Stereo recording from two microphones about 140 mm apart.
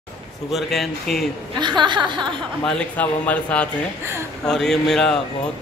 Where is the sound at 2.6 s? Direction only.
10° left (ahead or behind).